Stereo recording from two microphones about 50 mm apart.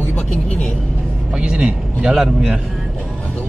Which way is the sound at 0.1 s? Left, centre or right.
Left.